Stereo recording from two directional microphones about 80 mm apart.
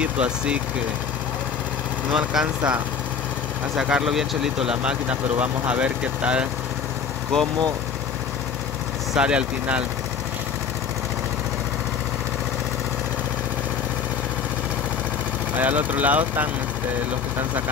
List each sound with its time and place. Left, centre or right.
0.0 s speech: centre
2.1 s speech: centre
7.3 s speech: centre
9.1 s speech: centre
15.5 s speech: right